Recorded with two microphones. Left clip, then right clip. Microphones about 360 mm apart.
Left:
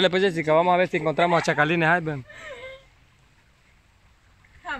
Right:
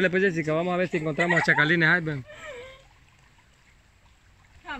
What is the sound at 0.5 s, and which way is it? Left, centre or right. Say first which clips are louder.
Speech: left 7 dB; left.